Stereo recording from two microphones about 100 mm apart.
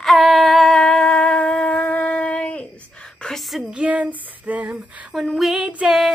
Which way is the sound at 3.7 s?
10° right (ahead or behind).